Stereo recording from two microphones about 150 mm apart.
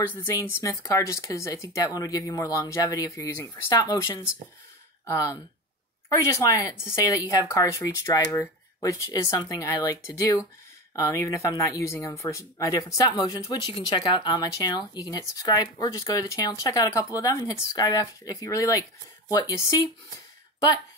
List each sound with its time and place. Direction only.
0.1 s speech: 20° left (ahead or behind)